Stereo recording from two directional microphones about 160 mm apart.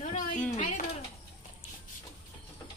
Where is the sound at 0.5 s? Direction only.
50° left (ahead or behind).